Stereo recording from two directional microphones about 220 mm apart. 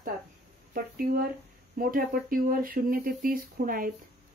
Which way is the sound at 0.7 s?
45° right (ahead or behind).